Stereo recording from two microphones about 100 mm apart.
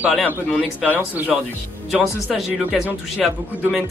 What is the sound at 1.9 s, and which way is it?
Speech, 5° right (ahead or behind).